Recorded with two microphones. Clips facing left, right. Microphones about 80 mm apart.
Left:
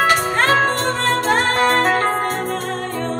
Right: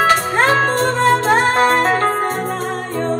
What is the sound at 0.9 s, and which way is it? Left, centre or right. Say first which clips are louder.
Music: right 4 dB; centre.